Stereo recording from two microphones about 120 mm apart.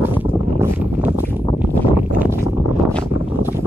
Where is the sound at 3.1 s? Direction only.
20° right (ahead or behind).